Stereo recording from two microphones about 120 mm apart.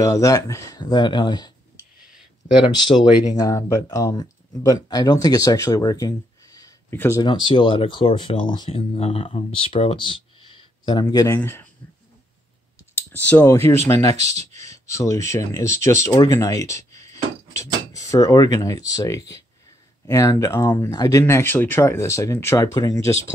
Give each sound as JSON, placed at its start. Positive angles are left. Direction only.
{"t": 0.0, "sound": "speech", "side_deg": 25}
{"t": 2.7, "sound": "speech", "side_deg": 40}
{"t": 7.2, "sound": "speech", "side_deg": 40}
{"t": 8.6, "sound": "speech", "side_deg": 55}
{"t": 11.2, "sound": "speech", "side_deg": 20}
{"t": 13.3, "sound": "speech", "side_deg": 20}
{"t": 14.1, "sound": "speech", "side_deg": -65}
{"t": 14.6, "sound": "speech", "side_deg": 25}